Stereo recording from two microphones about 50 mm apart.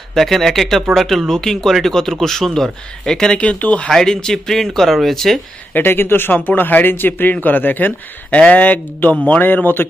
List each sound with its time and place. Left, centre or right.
0.1 s speech: centre
3.3 s speech: left
3.9 s speech: centre
5.7 s a man's voice: left